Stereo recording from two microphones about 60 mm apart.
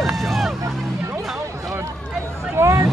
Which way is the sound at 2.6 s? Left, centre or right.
Right.